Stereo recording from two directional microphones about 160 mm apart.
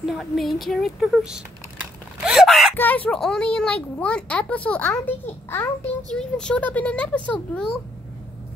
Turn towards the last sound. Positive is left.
turn(degrees=5)  # may be behind; listen again after turning